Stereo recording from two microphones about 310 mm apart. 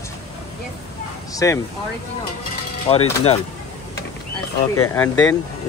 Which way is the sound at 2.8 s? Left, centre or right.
Centre.